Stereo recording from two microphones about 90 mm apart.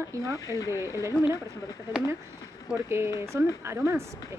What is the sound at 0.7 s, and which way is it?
Speech, 30° right (ahead or behind).